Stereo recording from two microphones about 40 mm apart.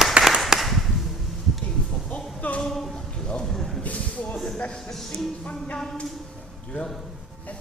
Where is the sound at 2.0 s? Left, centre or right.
Left.